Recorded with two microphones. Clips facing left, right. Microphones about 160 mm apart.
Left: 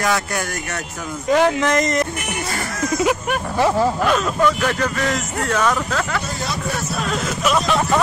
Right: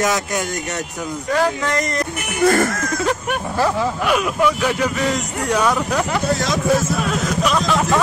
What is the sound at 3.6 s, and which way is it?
Speech, 25° left (ahead or behind).